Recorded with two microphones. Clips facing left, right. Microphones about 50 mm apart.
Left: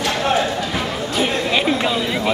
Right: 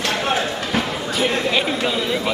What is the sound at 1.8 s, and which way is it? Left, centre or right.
Speech, centre.